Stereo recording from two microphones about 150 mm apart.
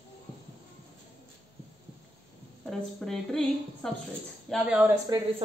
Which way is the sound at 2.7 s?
5° left (ahead or behind).